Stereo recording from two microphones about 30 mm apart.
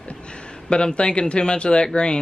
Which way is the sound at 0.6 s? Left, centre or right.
Left.